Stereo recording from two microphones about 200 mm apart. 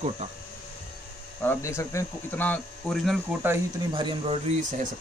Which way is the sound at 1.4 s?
10° left (ahead or behind).